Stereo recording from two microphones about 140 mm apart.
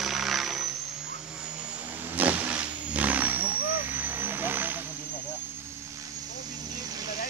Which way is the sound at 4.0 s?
15° right (ahead or behind).